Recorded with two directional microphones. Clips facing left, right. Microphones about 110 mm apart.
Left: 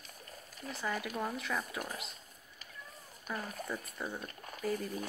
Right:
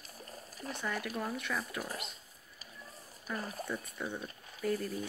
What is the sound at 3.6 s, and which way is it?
Speech, 5° left (ahead or behind).